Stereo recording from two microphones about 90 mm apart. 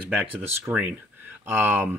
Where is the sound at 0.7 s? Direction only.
30° right (ahead or behind).